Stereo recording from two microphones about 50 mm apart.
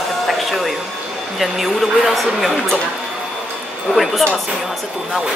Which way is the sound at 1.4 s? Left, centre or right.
Centre.